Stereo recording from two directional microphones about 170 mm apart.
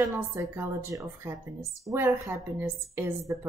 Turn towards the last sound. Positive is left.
turn(degrees=-15)  # may be behind; listen again after turning